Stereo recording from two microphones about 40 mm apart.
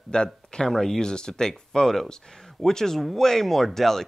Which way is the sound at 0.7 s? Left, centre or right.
Centre.